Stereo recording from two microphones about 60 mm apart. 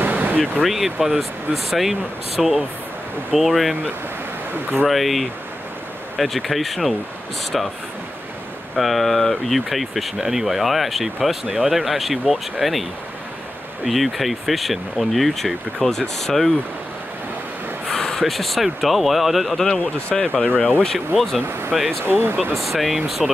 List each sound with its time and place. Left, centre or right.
0.0 s a sound: right
0.4 s speech: centre
4.8 s speech: centre
8.7 s speech: centre
13.8 s speech: centre
17.8 s speech: centre
19.8 s speech: centre
21.7 s speech: centre
22.0 s speech: right
22.6 s speech: centre